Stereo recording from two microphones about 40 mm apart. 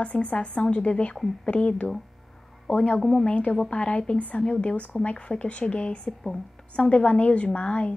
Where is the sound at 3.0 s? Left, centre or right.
Centre.